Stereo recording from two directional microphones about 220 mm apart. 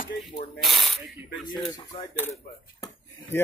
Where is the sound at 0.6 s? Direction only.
Centre (ahead or behind).